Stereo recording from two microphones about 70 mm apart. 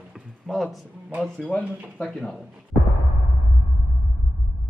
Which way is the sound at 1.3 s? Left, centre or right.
Centre.